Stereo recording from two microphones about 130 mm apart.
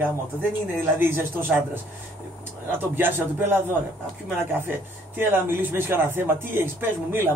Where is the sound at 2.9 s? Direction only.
15° right (ahead or behind).